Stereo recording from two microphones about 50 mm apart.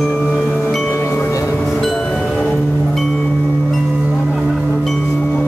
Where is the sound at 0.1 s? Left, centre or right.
Centre.